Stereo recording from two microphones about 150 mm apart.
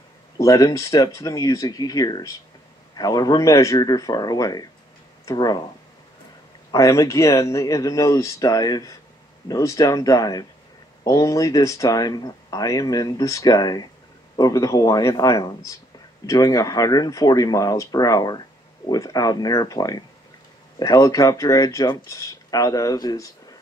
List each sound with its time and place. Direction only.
0.4 s speech: 20° left (ahead or behind)
6.7 s speech: 20° left (ahead or behind)